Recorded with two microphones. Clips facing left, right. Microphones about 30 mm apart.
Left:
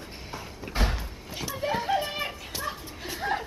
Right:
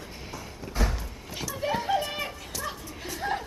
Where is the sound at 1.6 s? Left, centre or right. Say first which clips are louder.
Even; centre.